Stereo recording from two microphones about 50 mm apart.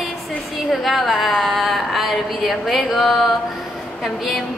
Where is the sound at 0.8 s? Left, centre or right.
Centre.